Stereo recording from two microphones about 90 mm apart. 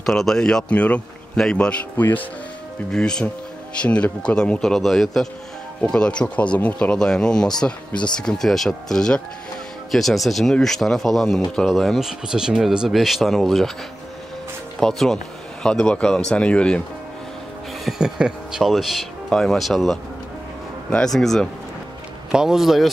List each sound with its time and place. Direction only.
0.0 s speech: 5° left (ahead or behind)
2.0 s speech: 20° left (ahead or behind)
2.9 s speech: 10° left (ahead or behind)
14.8 s speech: 5° left (ahead or behind)
17.8 s speech: 5° right (ahead or behind)
22.3 s speech: 5° right (ahead or behind)